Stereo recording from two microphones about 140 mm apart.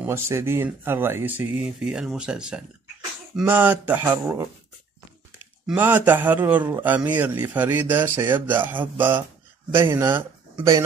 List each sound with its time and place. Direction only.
0.0 s a man's voice: 20° right (ahead or behind)
5.8 s a man's voice: 15° right (ahead or behind)